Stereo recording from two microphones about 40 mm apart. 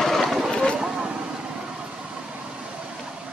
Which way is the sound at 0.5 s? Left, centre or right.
Left.